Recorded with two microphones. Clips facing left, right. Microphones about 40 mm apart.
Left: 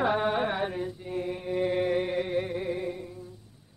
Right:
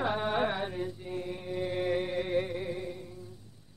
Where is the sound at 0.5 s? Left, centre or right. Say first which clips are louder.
Left 4 dB; centre.